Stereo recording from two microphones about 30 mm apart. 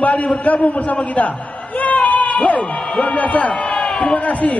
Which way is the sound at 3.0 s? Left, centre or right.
Left.